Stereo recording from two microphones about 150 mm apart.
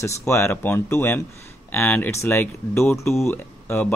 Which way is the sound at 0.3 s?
15° left (ahead or behind).